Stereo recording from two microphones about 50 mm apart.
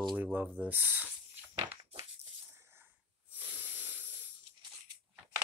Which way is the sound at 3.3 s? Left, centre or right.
Right.